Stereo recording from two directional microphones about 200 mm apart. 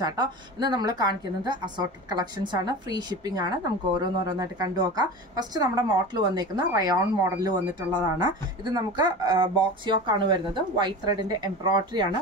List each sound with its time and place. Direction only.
0.0 s a woman's voice: 20° right (ahead or behind)